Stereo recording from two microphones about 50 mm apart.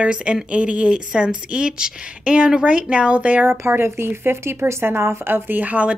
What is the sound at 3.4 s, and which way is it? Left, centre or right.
Speech, right.